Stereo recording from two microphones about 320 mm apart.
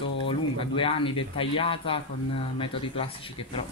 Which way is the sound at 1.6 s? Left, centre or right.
Centre.